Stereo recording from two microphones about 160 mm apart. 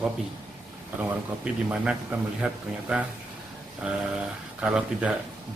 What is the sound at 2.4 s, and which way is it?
Speech, 5° right (ahead or behind).